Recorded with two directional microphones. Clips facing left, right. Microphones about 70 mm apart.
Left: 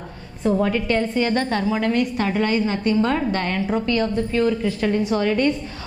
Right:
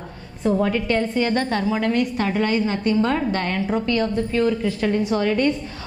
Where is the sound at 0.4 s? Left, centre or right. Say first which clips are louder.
Even; centre.